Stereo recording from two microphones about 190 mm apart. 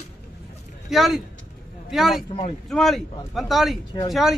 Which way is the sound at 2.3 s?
30° left (ahead or behind).